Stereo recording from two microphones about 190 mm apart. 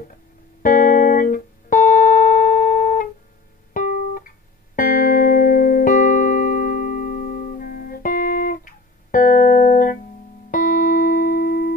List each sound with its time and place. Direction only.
0.6 s music: 45° left (ahead or behind)